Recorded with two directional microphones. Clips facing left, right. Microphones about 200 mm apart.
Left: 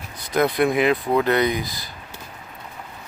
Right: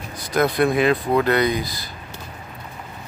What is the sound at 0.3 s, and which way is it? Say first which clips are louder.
Speech: right 1 dB; 20° left (ahead or behind).